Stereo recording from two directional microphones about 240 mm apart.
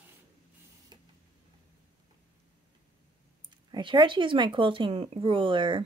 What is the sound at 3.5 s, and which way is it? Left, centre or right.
Speech, centre.